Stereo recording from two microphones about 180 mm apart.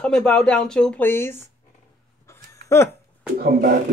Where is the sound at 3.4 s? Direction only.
60° right (ahead or behind).